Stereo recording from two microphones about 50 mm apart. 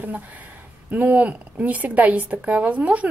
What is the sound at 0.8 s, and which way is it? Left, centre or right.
A woman's voice, right.